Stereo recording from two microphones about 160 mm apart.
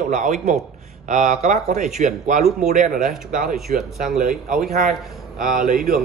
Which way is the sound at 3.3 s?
60° right (ahead or behind).